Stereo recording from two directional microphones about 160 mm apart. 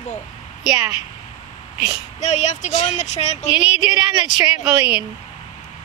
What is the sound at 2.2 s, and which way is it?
Speech, 45° left (ahead or behind).